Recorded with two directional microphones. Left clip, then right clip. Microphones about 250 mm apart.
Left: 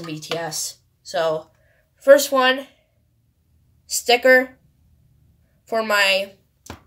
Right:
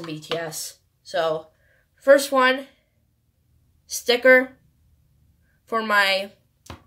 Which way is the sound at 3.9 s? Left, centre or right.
Centre.